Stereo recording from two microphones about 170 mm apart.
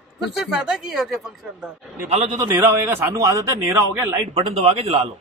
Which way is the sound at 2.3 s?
15° right (ahead or behind).